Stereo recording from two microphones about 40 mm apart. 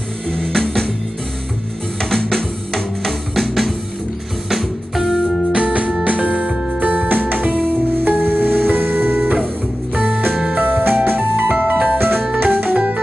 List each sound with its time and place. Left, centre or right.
0.5 s music: centre
2.0 s music: centre
4.5 s music: centre
5.5 s music: right
6.8 s music: right
9.9 s music: right
10.6 s music: right
12.0 s music: right
12.7 s organ: right